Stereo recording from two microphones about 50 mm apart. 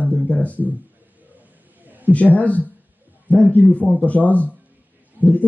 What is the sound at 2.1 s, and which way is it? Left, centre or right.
A man's voice, left.